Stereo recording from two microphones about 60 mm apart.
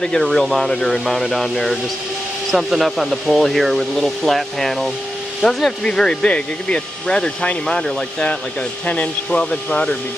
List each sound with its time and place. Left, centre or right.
0.0 s speech: centre